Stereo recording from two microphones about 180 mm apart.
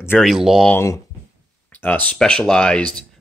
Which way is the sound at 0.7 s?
15° left (ahead or behind).